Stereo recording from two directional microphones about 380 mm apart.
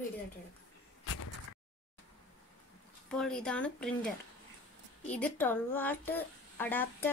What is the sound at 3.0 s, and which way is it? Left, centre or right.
A woman's voice, centre.